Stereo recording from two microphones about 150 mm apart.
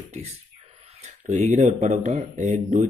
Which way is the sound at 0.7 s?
45° right (ahead or behind).